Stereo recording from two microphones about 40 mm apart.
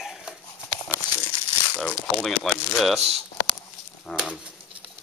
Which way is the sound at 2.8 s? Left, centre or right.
Centre.